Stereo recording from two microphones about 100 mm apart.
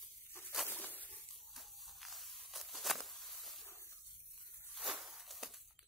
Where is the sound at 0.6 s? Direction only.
20° left (ahead or behind).